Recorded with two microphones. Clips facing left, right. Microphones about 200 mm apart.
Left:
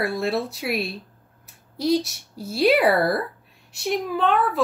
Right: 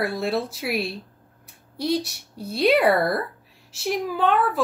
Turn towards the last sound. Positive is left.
turn(degrees=0)  # may be behind; listen again after turning